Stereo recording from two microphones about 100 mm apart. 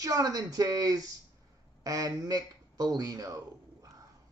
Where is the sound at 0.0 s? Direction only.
40° right (ahead or behind).